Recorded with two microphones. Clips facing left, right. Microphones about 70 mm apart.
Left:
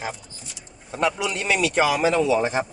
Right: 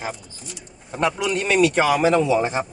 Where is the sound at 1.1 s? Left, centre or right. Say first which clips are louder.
Right 5 dB; right.